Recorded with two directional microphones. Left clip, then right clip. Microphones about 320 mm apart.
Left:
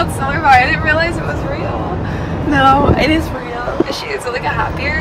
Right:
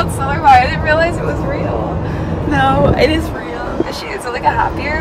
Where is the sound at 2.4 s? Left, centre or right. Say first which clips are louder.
Left 2 dB; centre.